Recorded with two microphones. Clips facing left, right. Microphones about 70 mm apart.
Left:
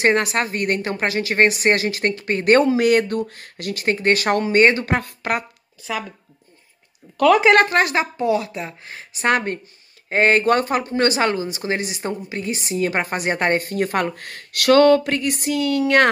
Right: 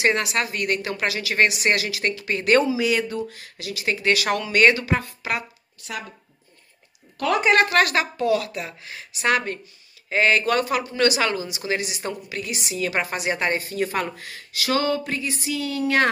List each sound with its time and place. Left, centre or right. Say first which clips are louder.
0.0 s a woman's voice: left 4 dB; left
4.8 s speech: left 3 dB; left
7.6 s a woman's voice: left 1 dB; left